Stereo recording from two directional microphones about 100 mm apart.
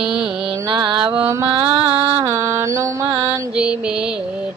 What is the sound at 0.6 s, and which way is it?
Mantra, 50° right (ahead or behind).